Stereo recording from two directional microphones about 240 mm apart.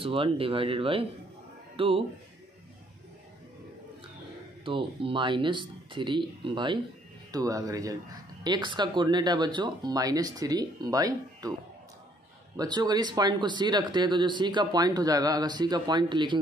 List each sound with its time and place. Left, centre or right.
0.0 s speech: right
4.6 s speech: right
12.5 s speech: centre